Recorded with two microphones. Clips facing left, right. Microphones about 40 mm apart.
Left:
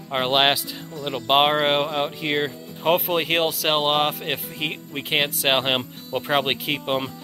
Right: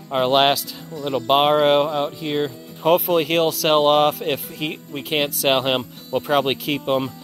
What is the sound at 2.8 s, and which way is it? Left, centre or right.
Speech, left.